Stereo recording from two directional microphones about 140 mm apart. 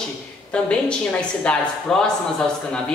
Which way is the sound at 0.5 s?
5° left (ahead or behind).